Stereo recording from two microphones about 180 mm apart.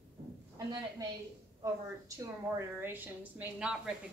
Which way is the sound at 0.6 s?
20° right (ahead or behind).